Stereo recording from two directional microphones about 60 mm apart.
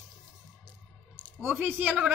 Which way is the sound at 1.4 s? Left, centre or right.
Right.